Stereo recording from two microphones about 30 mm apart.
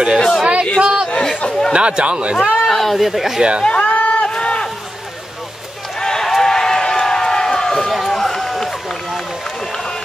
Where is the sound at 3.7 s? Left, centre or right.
Left.